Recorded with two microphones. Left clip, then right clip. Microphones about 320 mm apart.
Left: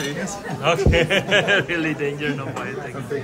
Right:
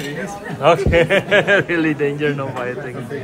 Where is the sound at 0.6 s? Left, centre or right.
Centre.